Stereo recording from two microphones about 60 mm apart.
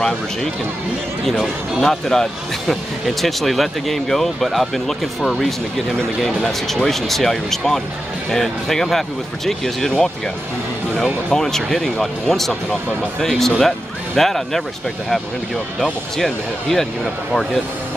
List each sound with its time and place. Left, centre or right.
1.4 s speech: centre
11.2 s speech: centre
15.8 s speech: centre